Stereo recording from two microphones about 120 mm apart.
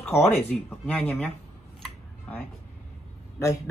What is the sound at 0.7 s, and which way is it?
Speech, 15° left (ahead or behind).